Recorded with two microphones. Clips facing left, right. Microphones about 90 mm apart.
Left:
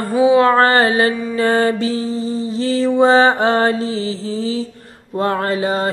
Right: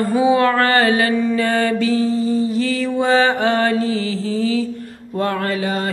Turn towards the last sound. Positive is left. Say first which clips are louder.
# left 3 dB
turn(degrees=30)  # may be behind; listen again after turning